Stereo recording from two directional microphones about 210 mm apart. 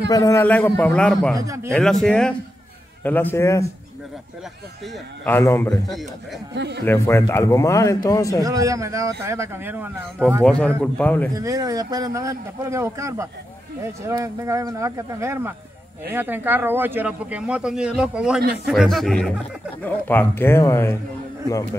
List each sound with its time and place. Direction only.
0.1 s speech: 15° left (ahead or behind)
1.4 s a man's voice: 15° right (ahead or behind)
1.7 s speech: 5° left (ahead or behind)
4.8 s speech: 5° left (ahead or behind)
6.5 s speech: 55° right (ahead or behind)
6.9 s speech: 15° left (ahead or behind)
8.5 s a man's voice: 15° right (ahead or behind)
10.4 s speech: 5° left (ahead or behind)
11.3 s a man's voice: 15° right (ahead or behind); by 21.0 s 10° left (ahead or behind)